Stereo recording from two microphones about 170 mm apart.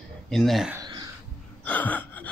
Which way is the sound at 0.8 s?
25° right (ahead or behind).